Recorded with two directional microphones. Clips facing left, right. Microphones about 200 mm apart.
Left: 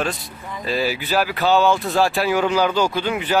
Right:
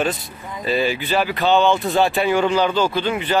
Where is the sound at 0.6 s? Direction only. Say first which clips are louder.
Right 2 dB; centre (ahead or behind).